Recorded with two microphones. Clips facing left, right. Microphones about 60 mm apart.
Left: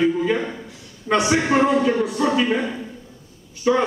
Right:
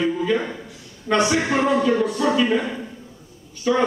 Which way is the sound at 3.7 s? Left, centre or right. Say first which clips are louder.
Left 2 dB; centre.